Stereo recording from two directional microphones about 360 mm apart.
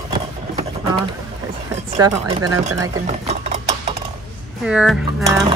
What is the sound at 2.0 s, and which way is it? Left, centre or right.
Speech, centre.